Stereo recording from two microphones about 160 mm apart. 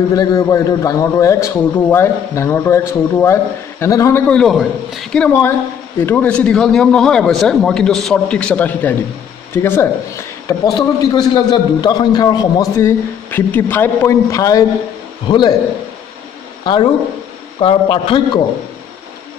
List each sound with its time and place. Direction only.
0.1 s a man's voice: 20° left (ahead or behind)
4.3 s a man's voice: centre (ahead or behind); by 15.5 s 30° left (ahead or behind)
16.6 s a man's voice: 30° left (ahead or behind)